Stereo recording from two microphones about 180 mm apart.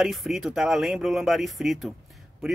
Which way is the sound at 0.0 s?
Centre (ahead or behind).